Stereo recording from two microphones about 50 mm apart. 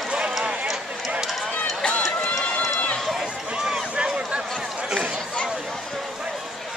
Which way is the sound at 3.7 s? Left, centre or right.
Centre.